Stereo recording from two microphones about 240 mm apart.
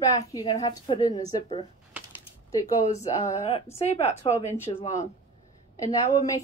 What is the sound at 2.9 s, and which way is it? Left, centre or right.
Speech, left.